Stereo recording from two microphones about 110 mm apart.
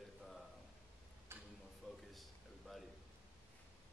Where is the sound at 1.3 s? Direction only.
20° right (ahead or behind).